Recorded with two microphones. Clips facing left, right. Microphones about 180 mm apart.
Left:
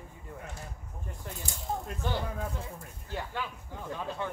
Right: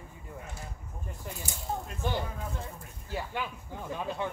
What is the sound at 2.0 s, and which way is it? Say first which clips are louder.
Speech: right 1 dB; 15° right (ahead or behind).